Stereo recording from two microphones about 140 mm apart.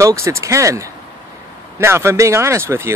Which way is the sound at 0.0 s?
20° right (ahead or behind).